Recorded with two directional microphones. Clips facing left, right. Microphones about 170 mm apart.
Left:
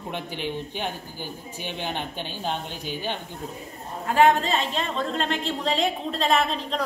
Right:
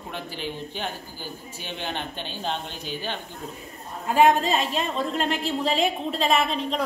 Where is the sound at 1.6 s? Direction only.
15° left (ahead or behind).